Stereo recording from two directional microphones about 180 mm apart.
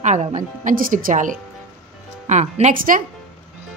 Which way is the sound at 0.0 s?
40° right (ahead or behind).